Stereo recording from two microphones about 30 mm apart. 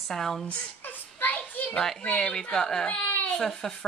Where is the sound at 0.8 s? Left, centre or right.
Left.